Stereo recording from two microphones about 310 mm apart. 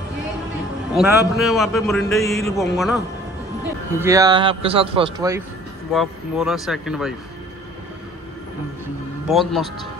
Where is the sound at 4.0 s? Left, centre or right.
Centre.